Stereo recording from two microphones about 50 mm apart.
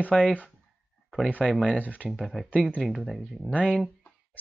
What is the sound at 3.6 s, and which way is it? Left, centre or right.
Speech, centre.